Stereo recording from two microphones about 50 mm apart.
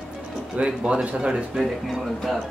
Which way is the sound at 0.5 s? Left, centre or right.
Right.